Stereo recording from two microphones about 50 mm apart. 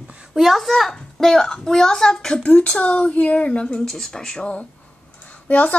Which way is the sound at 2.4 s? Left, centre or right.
Left.